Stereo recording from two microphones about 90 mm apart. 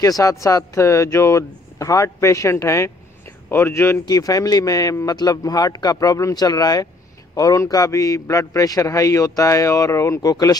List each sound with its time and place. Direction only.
0.0 s a man's voice: 40° left (ahead or behind)
4.0 s a man's voice: 45° left (ahead or behind)
10.3 s speech: 45° left (ahead or behind)